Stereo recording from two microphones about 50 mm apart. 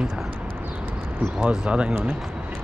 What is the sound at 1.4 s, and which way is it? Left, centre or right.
Speech, right.